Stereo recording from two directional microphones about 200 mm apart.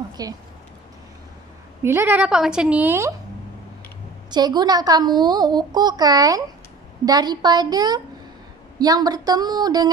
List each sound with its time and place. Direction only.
0.2 s a child's voice: 20° right (ahead or behind)
1.8 s a woman's voice: 10° right (ahead or behind)
4.3 s a child's voice: 20° right (ahead or behind)